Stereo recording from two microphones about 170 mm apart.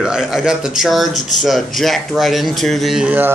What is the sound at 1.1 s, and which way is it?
Speech, 45° left (ahead or behind).